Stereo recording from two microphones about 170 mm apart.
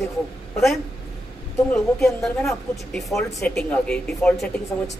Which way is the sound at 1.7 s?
Centre (ahead or behind).